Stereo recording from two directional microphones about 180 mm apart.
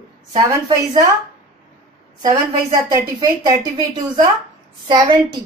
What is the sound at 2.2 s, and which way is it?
A woman's voice, 20° right (ahead or behind).